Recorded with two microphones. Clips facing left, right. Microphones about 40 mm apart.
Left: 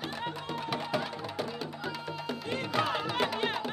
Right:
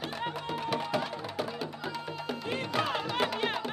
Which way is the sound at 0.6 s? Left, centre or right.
Centre.